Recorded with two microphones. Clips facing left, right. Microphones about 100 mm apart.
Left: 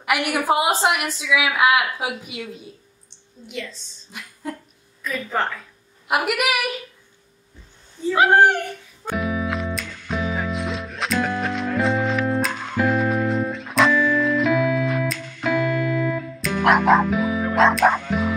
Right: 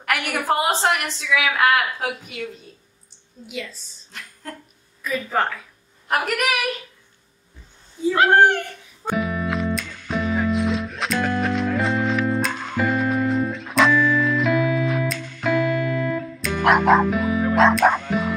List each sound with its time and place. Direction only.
0.0 s a woman's voice: 10° left (ahead or behind)
3.4 s a woman's voice: 5° right (ahead or behind)
4.1 s a sound: 10° left (ahead or behind)
5.0 s a woman's voice: centre (ahead or behind)
6.0 s a woman's voice: 10° left (ahead or behind)
8.1 s a woman's voice: 15° left (ahead or behind)
9.1 s music: centre (ahead or behind)